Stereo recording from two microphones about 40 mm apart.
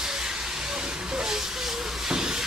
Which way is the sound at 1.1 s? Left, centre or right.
Centre.